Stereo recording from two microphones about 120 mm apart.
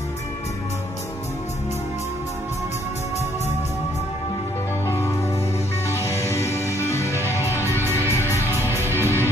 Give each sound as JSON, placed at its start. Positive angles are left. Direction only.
{"t": 4.8, "sound": "music", "side_deg": 20}
{"t": 9.0, "sound": "music", "side_deg": -20}